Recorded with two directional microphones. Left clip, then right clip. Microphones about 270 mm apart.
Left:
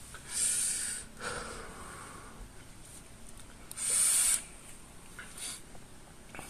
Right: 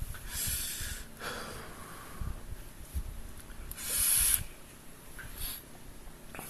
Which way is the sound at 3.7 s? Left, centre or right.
Centre.